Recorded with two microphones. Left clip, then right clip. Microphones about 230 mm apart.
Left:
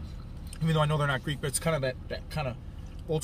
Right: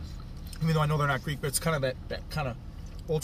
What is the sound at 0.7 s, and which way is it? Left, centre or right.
Speech, centre.